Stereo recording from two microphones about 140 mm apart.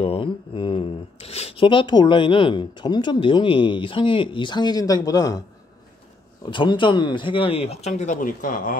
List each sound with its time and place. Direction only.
0.0 s speech: 40° left (ahead or behind)
6.4 s speech: 35° left (ahead or behind); by 8.7 s 80° left